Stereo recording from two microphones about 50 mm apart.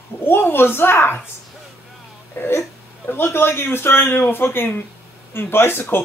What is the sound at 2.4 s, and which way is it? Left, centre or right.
Speech, left.